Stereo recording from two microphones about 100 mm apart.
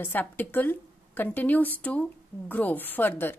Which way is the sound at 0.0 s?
20° left (ahead or behind).